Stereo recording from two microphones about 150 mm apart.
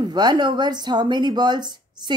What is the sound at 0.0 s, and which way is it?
A woman's voice, 30° right (ahead or behind).